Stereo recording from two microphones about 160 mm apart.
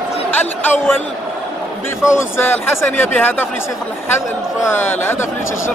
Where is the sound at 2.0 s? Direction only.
15° left (ahead or behind).